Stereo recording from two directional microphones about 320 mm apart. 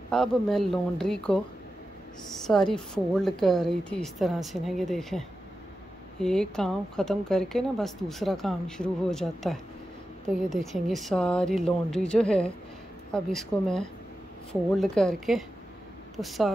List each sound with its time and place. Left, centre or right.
0.1 s speech: centre
2.4 s speech: centre